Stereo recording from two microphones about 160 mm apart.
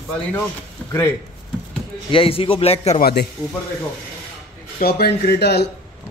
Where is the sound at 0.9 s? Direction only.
15° left (ahead or behind).